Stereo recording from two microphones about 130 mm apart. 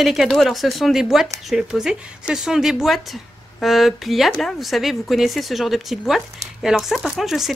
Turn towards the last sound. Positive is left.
turn(degrees=0)  # may be behind; listen again after turning